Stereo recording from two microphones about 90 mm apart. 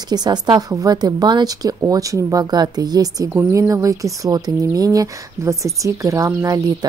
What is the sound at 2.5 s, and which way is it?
Speech, 50° right (ahead or behind).